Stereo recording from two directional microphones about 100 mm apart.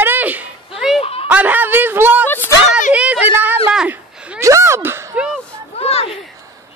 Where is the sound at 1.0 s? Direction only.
80° left.